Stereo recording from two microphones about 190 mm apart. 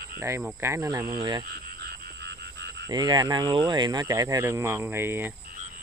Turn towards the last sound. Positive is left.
turn(degrees=-10)  # may be behind; listen again after turning